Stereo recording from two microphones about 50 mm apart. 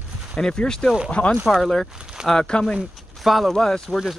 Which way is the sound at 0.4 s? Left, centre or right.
Centre.